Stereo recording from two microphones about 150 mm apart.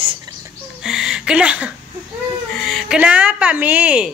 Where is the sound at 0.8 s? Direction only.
5° right (ahead or behind).